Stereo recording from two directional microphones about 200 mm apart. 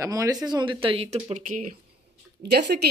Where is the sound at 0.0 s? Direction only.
15° right (ahead or behind); by 1.8 s 40° right (ahead or behind).